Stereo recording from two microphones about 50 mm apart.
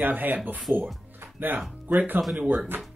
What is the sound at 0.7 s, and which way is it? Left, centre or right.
Speech, right.